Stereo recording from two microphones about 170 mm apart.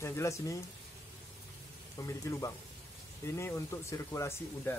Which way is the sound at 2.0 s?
20° left (ahead or behind).